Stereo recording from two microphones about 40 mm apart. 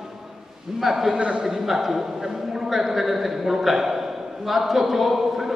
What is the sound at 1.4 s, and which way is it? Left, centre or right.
A man's voice, centre.